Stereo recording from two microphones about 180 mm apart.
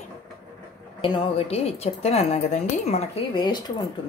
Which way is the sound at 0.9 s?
30° left (ahead or behind).